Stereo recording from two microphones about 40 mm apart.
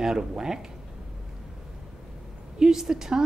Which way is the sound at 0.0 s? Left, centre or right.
Centre.